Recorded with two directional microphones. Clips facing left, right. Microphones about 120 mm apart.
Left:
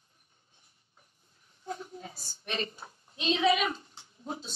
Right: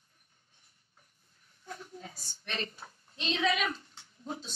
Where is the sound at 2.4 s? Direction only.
20° left (ahead or behind).